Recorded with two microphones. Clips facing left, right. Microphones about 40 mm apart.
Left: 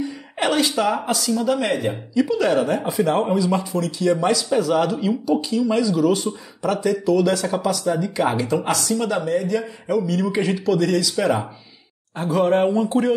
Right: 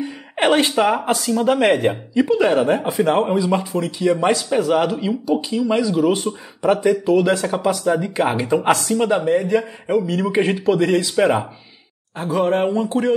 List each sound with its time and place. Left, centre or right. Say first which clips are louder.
0.0 s speech: right 4 dB; right
2.1 s speech: right 2 dB; right
12.2 s speech: even; centre